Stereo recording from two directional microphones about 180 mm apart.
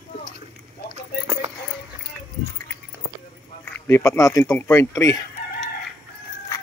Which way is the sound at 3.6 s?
15° left (ahead or behind).